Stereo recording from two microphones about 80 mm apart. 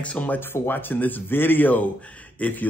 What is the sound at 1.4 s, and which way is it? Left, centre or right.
Speech, left.